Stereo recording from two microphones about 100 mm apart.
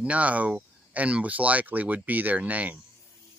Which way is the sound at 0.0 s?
15° right (ahead or behind).